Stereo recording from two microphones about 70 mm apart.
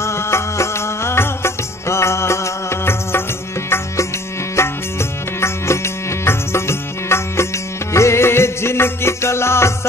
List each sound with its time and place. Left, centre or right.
0.0 s music: left
3.7 s music: left